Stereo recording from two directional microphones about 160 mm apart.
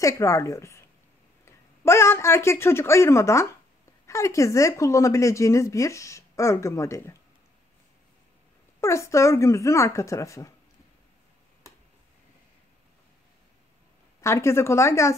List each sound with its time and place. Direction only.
0.0 s a woman's voice: 20° left (ahead or behind)
8.8 s a woman's voice: 20° left (ahead or behind)
14.2 s speech: 15° left (ahead or behind)